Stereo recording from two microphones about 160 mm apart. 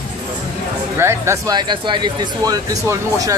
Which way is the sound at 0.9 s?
15° right (ahead or behind).